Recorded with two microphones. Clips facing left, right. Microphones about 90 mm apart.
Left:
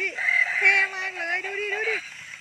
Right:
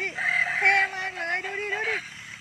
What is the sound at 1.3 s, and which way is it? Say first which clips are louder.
Music: left 2 dB; 5° right (ahead or behind).